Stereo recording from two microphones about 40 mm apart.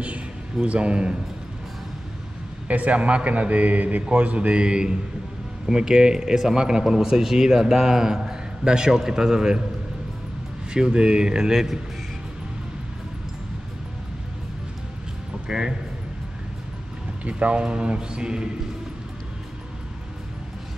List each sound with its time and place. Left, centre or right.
0.7 s speech: right
2.7 s a man's voice: right; by 9.6 s centre
10.7 s speech: right
15.4 s a man's voice: centre
17.2 s speech: right